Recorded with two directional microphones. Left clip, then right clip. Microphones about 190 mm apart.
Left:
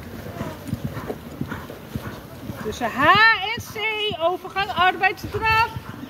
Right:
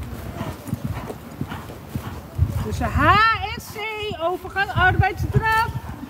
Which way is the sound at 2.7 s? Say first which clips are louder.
Left 1 dB; 75° right (ahead or behind).